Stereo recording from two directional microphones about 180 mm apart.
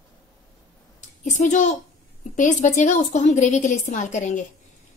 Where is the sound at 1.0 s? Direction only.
40° left (ahead or behind).